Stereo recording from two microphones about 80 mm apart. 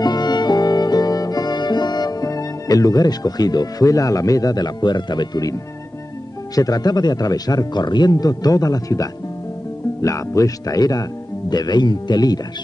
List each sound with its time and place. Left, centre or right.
0.0 s music: left
6.5 s speech: left
11.5 s speech: left